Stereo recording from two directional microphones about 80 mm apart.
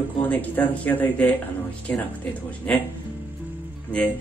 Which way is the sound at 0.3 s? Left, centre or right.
Left.